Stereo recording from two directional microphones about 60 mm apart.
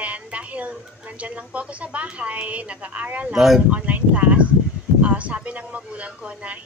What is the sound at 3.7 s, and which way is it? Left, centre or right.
Speech, right.